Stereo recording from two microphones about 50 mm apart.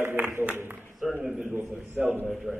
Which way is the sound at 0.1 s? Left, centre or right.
Right.